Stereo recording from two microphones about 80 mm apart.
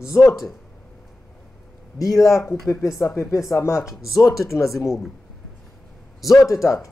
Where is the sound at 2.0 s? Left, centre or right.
Left.